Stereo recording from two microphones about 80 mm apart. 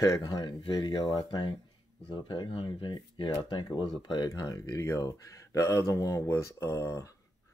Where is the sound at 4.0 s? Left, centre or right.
Left.